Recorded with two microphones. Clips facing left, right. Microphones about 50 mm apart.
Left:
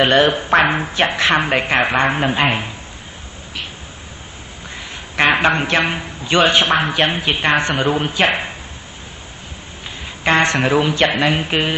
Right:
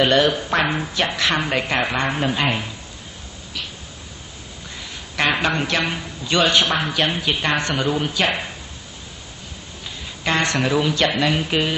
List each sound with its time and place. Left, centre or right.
0.0 s speech: left
4.7 s a man's voice: left
10.0 s speech: left